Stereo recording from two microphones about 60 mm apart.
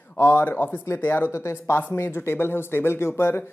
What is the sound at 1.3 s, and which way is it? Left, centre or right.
A woman's voice, left.